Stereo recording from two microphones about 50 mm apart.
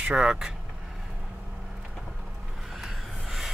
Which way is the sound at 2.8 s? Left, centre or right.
Centre.